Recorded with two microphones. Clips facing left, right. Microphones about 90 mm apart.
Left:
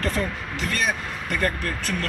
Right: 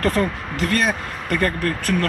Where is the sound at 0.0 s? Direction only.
55° right (ahead or behind).